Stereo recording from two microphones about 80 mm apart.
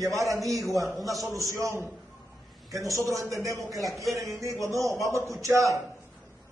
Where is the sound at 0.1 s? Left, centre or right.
Right.